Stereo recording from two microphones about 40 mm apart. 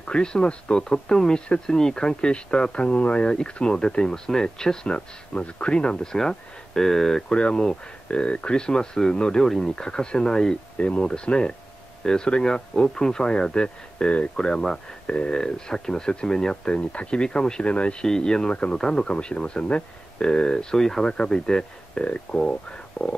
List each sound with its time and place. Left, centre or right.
0.0 s speech: left
3.3 s speech: centre
6.1 s speech: centre
7.2 s speech: left
9.4 s speech: centre
9.8 s speech: left
12.0 s speech: centre
15.4 s speech: centre
16.6 s speech: left
18.0 s speech: centre
19.0 s speech: left
22.0 s speech: left